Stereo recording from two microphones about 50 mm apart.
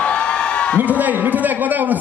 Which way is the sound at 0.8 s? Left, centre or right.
Right.